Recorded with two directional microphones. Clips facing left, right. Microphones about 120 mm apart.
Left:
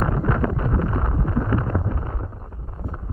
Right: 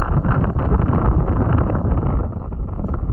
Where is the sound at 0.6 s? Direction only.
55° right (ahead or behind).